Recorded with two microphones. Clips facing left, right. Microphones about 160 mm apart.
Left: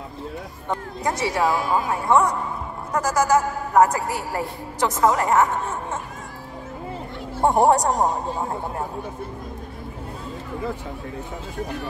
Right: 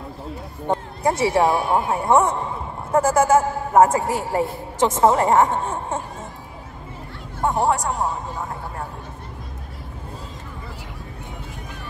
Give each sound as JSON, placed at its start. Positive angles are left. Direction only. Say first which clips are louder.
{"t": 0.7, "sound": "a man's voice", "louder": "right 4 dB", "side_deg": -30}
{"t": 7.4, "sound": "a man's voice", "louder": "left 4 dB", "side_deg": 40}